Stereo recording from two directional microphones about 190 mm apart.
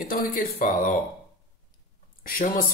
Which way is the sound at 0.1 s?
45° left (ahead or behind).